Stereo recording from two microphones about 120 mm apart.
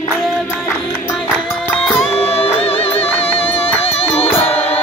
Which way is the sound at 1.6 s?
10° left (ahead or behind).